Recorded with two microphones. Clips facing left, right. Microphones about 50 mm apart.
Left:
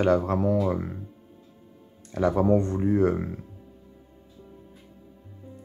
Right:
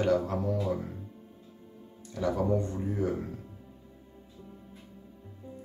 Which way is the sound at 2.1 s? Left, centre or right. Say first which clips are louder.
Left 6 dB; left.